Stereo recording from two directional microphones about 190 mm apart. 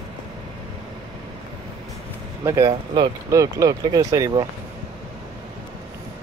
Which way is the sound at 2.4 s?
15° right (ahead or behind).